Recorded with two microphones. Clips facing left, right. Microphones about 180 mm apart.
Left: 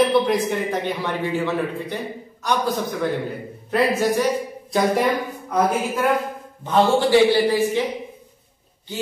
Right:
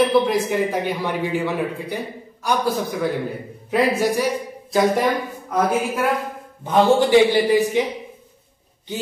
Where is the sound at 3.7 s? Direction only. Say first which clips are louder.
Right 1 dB; 10° right (ahead or behind).